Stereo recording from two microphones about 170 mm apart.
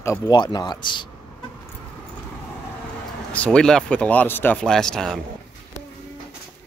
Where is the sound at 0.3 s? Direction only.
25° left (ahead or behind).